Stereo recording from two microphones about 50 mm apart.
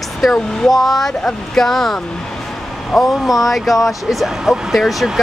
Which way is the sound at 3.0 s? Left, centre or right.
Centre.